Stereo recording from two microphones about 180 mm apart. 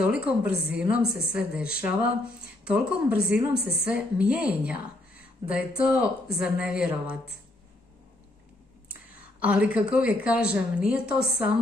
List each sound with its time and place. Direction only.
0.0 s a woman's voice: 5° right (ahead or behind)
1.0 s a woman's voice: 60° right (ahead or behind)
1.3 s a woman's voice: 5° right (ahead or behind)
9.4 s a woman's voice: 5° right (ahead or behind)